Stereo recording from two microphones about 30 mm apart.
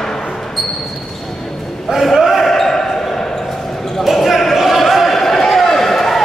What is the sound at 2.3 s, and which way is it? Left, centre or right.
Basketball bounce, centre.